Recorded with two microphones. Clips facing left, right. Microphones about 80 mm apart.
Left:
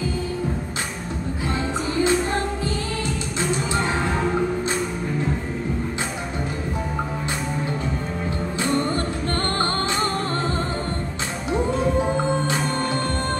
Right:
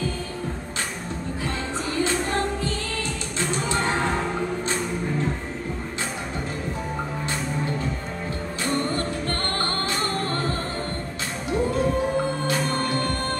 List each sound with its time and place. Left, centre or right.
1.5 s music: centre
8.6 s music: centre
11.5 s music: left